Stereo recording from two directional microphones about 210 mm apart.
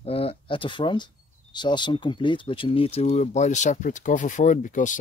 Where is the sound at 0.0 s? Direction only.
25° left (ahead or behind).